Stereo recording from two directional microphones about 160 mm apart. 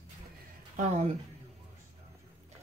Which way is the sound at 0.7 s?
50° right (ahead or behind).